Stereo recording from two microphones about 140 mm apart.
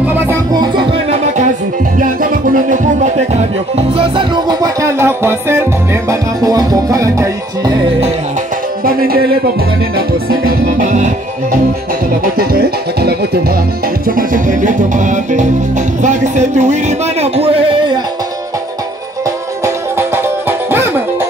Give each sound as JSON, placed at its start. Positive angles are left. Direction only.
{"t": 0.0, "sound": "music", "side_deg": -10}
{"t": 0.5, "sound": "music", "side_deg": -30}
{"t": 2.5, "sound": "music", "side_deg": -60}
{"t": 3.7, "sound": "music", "side_deg": -40}
{"t": 8.8, "sound": "music", "side_deg": -90}
{"t": 9.9, "sound": "music", "side_deg": -80}
{"t": 14.0, "sound": "music", "side_deg": -80}
{"t": 17.2, "sound": "a sound", "side_deg": -45}
{"t": 19.6, "sound": "music", "side_deg": -15}